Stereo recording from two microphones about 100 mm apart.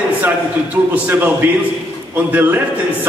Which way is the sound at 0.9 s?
20° right (ahead or behind).